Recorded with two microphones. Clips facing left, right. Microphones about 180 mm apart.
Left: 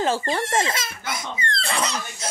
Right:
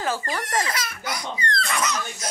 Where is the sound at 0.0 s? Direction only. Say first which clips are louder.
Left 4 dB; 25° left (ahead or behind).